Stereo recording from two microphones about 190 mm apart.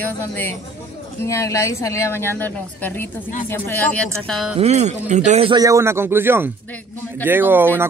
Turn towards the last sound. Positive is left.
turn(degrees=-10)  # may be behind; listen again after turning